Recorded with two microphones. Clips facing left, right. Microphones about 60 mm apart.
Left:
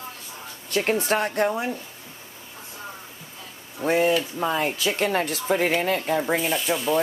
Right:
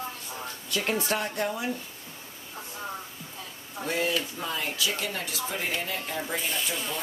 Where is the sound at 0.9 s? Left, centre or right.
Left.